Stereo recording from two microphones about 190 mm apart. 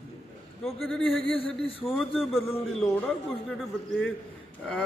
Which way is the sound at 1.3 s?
30° left (ahead or behind).